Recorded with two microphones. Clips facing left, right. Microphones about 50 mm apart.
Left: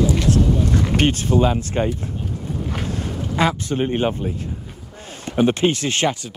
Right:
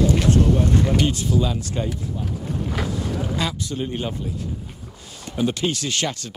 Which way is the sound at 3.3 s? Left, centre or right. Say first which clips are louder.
Left 6 dB; left.